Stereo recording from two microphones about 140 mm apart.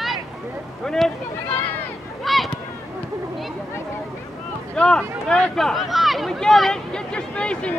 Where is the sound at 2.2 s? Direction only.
Centre (ahead or behind).